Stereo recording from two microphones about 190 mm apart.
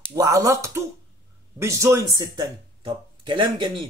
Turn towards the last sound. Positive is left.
turn(degrees=-25)  # may be behind; listen again after turning